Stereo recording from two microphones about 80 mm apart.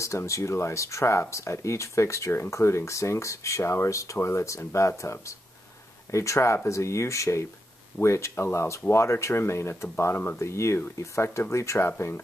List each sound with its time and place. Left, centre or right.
0.0 s speech: left